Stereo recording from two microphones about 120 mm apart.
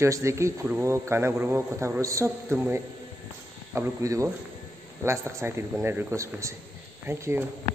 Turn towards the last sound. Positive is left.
turn(degrees=-20)  # may be behind; listen again after turning